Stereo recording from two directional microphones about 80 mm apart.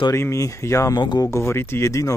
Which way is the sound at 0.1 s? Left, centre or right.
Left.